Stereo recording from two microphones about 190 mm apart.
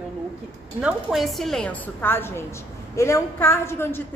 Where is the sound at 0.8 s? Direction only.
Centre (ahead or behind).